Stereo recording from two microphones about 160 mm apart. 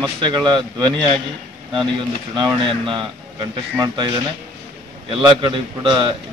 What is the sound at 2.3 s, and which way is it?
Speech, 30° right (ahead or behind).